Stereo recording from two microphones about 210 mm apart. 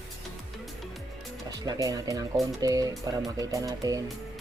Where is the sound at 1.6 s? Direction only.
15° right (ahead or behind).